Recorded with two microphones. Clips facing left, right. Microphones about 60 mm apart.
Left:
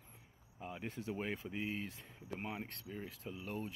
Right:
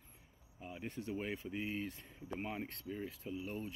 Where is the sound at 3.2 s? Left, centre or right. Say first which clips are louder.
Right 2 dB; left.